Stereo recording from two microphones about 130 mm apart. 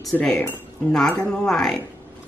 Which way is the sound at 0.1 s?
10° left (ahead or behind).